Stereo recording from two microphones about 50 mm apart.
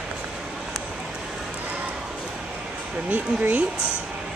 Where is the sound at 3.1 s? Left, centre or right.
Right.